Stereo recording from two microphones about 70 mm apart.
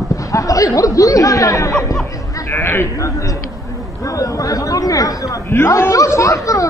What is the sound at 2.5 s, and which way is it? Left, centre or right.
Speech, left.